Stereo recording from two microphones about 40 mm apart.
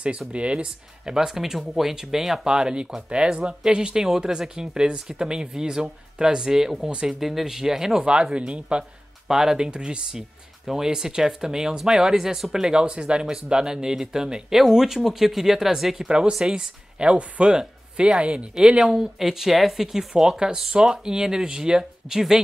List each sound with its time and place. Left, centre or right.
0.3 s speech: right
1.1 s speech: centre
2.5 s speech: right
9.3 s speech: centre
12.6 s speech: right
16.1 s speech: right
18.9 s speech: centre